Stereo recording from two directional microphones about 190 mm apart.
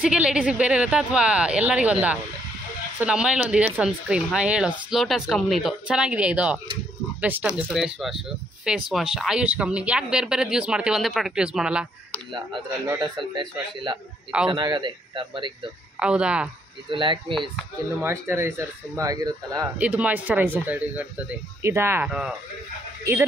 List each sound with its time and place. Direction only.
0.0 s speech: 5° right (ahead or behind)
12.8 s a man's voice: 15° right (ahead or behind)
16.0 s speech: 5° right (ahead or behind)
16.9 s a man's voice: 25° right (ahead or behind)
17.3 s speech: centre (ahead or behind)
18.0 s a man's voice: 15° right (ahead or behind)
19.8 s speech: 10° right (ahead or behind)